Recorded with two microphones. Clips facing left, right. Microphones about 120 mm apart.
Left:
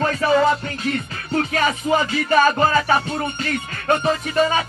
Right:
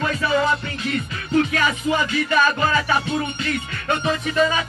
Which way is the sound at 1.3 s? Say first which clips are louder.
Right 1 dB; 35° left (ahead or behind).